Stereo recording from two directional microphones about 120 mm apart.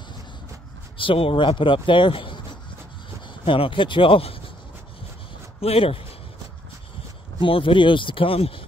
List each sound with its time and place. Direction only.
0.9 s speech: 50° left (ahead or behind)
3.4 s speech: 45° left (ahead or behind)
5.6 s speech: 55° left (ahead or behind)
7.3 s speech: 45° left (ahead or behind)